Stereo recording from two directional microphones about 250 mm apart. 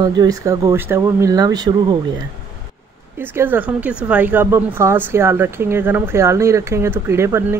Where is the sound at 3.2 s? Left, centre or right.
Centre.